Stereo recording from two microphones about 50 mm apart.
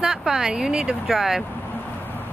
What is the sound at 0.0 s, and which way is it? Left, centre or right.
Speech, centre.